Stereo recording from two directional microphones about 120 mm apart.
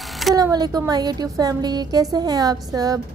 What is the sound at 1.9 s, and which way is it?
A woman's voice, 30° right (ahead or behind).